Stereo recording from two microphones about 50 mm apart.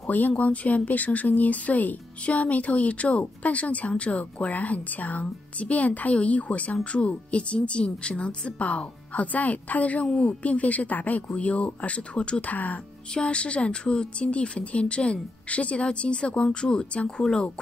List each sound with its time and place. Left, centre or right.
0.4 s speech: left
13.1 s speech: left